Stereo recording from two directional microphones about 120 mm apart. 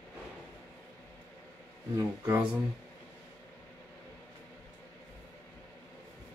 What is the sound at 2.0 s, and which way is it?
Speech, 20° right (ahead or behind).